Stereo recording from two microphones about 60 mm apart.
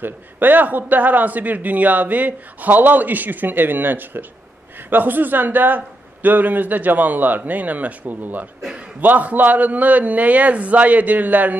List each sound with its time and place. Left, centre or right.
0.0 s a man's voice: right